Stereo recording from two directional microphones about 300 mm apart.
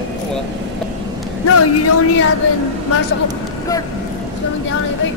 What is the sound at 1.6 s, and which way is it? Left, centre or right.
Speech, left.